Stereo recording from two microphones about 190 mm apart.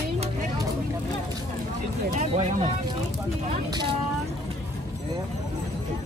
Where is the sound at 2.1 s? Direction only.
40° right (ahead or behind).